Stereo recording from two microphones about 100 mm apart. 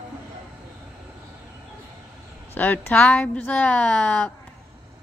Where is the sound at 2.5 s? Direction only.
20° left (ahead or behind).